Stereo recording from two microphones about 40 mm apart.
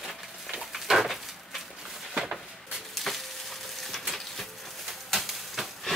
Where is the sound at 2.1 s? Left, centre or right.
Centre.